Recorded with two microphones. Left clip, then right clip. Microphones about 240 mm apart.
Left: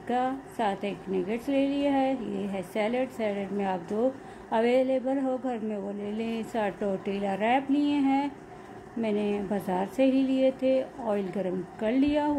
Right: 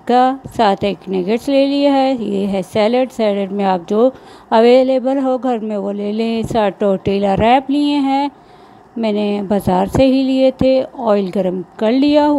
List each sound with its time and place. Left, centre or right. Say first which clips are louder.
0.0 s a woman's voice: right 16 dB; right